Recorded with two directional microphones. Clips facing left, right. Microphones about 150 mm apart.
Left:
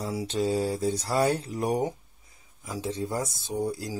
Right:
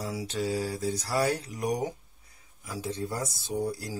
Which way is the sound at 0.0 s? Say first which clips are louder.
Left 4 dB; 25° left (ahead or behind).